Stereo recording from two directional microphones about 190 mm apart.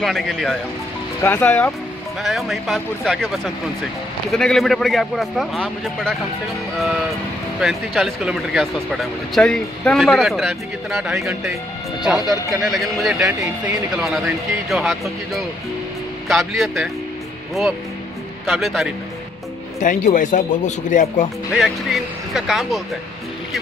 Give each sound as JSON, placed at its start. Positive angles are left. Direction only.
{"t": 0.0, "sound": "speech", "side_deg": 0}
{"t": 7.6, "sound": "speech", "side_deg": 0}
{"t": 13.4, "sound": "speech", "side_deg": -15}
{"t": 18.4, "sound": "speech", "side_deg": 0}
{"t": 19.8, "sound": "speech", "side_deg": 40}
{"t": 21.5, "sound": "speech", "side_deg": 0}